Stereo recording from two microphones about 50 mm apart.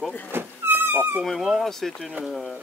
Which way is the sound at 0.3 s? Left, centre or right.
Right.